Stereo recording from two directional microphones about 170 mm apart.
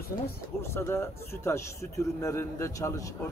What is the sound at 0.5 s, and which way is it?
Speech, 15° left (ahead or behind).